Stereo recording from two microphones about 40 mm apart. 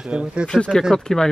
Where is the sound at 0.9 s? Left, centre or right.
Centre.